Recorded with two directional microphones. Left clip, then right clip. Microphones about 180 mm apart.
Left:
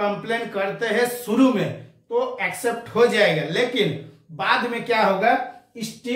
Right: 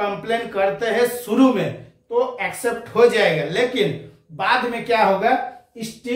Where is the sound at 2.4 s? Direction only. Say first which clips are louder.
Right 1 dB; 15° right (ahead or behind).